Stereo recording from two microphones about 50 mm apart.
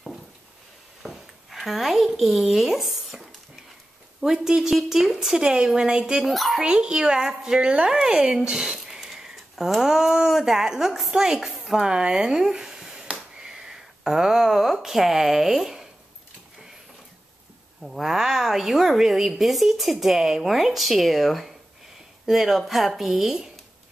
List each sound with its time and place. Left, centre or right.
1.0 s a sound: centre
4.2 s speech: centre
6.3 s a woman's voice: centre
6.6 s speech: centre
17.8 s a woman's voice: centre